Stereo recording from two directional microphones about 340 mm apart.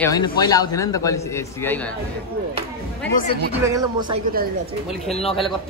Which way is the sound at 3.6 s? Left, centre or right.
Centre.